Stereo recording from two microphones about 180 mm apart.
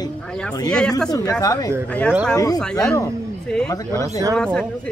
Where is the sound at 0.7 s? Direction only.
5° left (ahead or behind).